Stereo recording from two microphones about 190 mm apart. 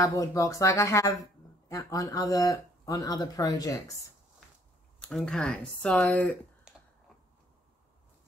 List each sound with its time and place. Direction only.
0.0 s speech: 15° left (ahead or behind)
5.0 s speech: 5° left (ahead or behind)